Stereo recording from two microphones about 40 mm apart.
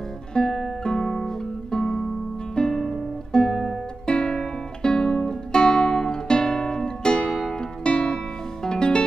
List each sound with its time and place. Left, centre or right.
0.3 s music: centre
0.8 s guitar: centre
1.7 s music: centre
7.8 s music: left